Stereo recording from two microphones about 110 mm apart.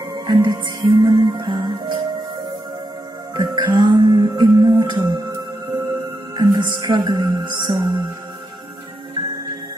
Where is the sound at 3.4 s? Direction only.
45° right (ahead or behind).